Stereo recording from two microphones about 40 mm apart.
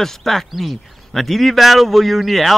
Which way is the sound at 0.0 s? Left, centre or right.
Centre.